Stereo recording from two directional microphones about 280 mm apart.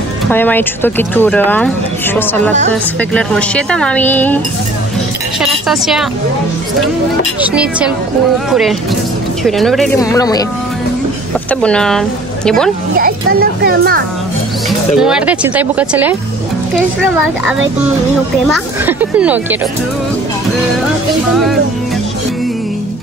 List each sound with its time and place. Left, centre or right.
0.3 s a woman's voice: centre
5.4 s a woman's voice: centre
7.4 s a woman's voice: centre
9.9 s speech: centre
11.6 s a woman's voice: centre
12.9 s speech: right
15.0 s a woman's voice: centre
18.5 s a woman's voice: centre